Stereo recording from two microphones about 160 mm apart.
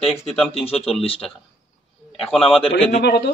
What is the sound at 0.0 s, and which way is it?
Speech, 40° left (ahead or behind).